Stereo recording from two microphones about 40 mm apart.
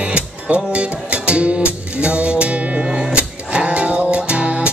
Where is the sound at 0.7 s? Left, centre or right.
Right.